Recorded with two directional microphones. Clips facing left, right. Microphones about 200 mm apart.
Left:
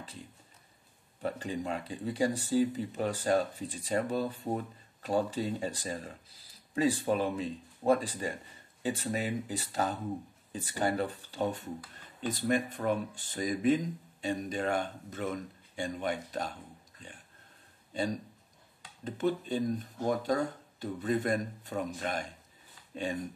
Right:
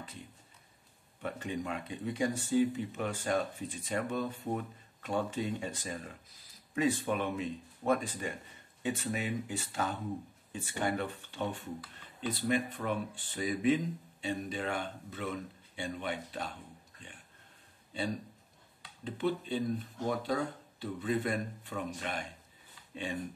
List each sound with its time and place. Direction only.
1.2 s speech: 35° left (ahead or behind)
18.8 s speech: 45° left (ahead or behind)